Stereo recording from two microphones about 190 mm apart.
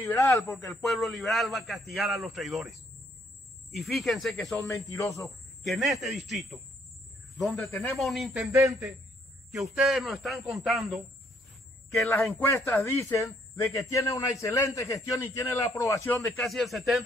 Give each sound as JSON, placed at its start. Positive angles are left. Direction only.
{"t": 0.0, "sound": "a man's voice", "side_deg": 15}
{"t": 0.7, "sound": "a man's voice", "side_deg": 0}
{"t": 3.7, "sound": "a man's voice", "side_deg": 0}
{"t": 4.6, "sound": "a man's voice", "side_deg": 15}
{"t": 5.6, "sound": "a man's voice", "side_deg": 0}
{"t": 8.5, "sound": "a man's voice", "side_deg": -15}
{"t": 9.5, "sound": "a man's voice", "side_deg": -5}
{"t": 12.2, "sound": "a man's voice", "side_deg": 10}